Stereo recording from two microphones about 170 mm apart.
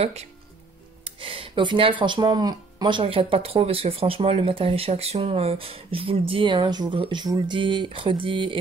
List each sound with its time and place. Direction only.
0.0 s speech: 40° right (ahead or behind)